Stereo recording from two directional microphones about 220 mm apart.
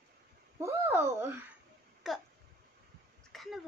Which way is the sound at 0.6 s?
10° right (ahead or behind).